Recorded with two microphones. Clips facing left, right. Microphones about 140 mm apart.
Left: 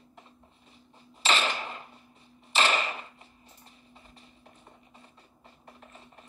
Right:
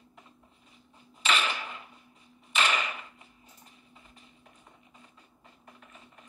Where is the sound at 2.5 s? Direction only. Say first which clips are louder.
Left 2 dB; 35° left (ahead or behind).